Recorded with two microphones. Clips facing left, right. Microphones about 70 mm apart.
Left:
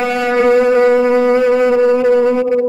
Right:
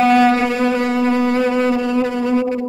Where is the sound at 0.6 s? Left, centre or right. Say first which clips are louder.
Left 7 dB; left.